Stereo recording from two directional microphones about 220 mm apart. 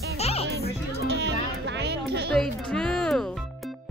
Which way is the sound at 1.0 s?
50° right (ahead or behind).